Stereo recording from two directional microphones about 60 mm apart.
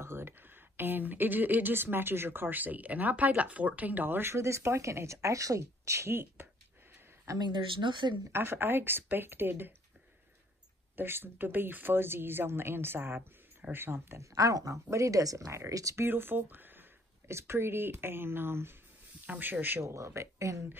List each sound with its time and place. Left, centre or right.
0.0 s a woman's voice: right
6.4 s a sound: right
7.3 s speech: right
8.3 s a woman's voice: right
11.0 s a woman's voice: right
14.2 s speech: right
16.0 s speech: right
17.3 s a woman's voice: right
19.2 s a woman's voice: right
19.8 s speech: right